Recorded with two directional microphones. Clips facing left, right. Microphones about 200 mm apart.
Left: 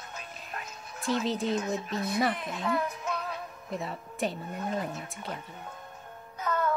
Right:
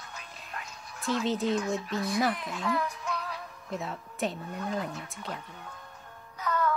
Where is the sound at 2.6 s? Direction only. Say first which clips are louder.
Left 1 dB; 25° left (ahead or behind).